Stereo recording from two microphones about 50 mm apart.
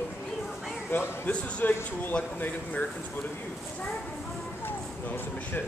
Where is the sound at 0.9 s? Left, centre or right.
Left.